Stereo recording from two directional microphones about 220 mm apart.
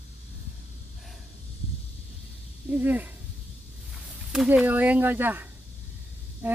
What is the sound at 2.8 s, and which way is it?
Speech, 10° right (ahead or behind).